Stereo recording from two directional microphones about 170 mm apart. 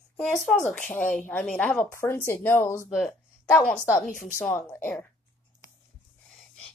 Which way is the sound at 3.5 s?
5° left (ahead or behind).